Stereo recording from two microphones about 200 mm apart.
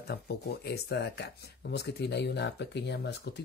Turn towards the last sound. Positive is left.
turn(degrees=55)  # may be behind; listen again after turning